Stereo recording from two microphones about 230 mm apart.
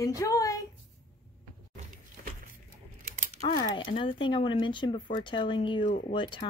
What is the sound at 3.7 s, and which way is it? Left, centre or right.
Speech, left.